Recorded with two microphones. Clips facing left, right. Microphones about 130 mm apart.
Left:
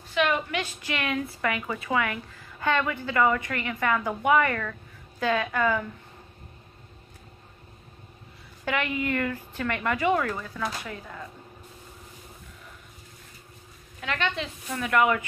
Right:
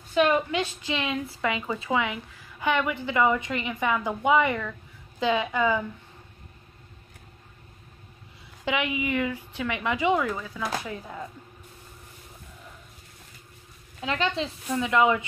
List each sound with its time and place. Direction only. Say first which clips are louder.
0.1 s a woman's voice: right 3 dB; 30° right (ahead or behind); by 5.9 s 15° right (ahead or behind)
8.6 s a woman's voice: even; 15° right (ahead or behind)
10.9 s a woman's voice: right 3 dB; 20° right (ahead or behind)
14.0 s speech: right 2 dB; 30° right (ahead or behind)
14.8 s a woman's voice: right 1 dB; 20° right (ahead or behind)